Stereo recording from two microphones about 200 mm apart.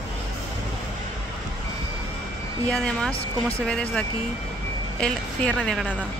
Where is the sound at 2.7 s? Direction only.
5° left (ahead or behind).